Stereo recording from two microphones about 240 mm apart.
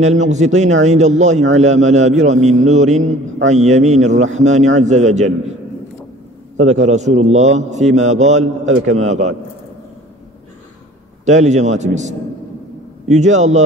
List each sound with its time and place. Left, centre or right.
0.0 s a man's voice: right
6.9 s a man's voice: right
11.2 s a man's voice: right